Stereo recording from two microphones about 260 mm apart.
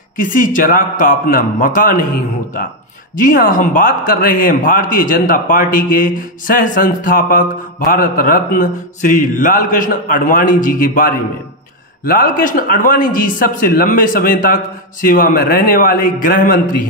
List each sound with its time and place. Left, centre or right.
0.2 s a man's voice: left
3.3 s a man's voice: left